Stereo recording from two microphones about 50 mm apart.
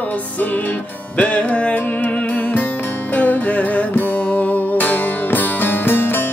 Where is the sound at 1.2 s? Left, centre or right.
Left.